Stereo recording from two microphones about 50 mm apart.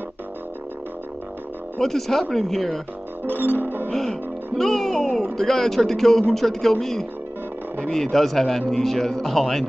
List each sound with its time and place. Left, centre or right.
1.8 s a man's voice: centre
3.3 s music: right
3.9 s a man's voice: centre